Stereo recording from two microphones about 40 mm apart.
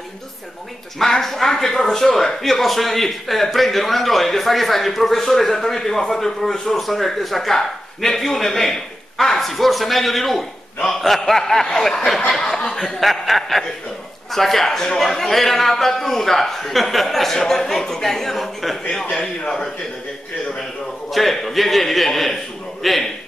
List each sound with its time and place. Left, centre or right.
1.2 s a man's voice: centre
13.0 s a man's voice: centre
19.1 s a man's voice: left
21.1 s a man's voice: centre